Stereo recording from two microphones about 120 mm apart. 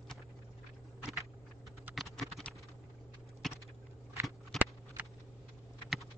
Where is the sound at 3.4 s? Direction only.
Centre (ahead or behind).